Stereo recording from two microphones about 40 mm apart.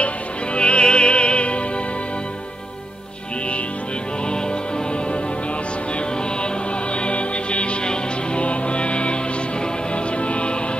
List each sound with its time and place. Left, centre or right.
0.6 s music: left
7.0 s music: left